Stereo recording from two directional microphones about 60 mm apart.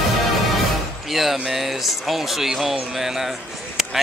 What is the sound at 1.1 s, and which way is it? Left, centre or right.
Speech, centre.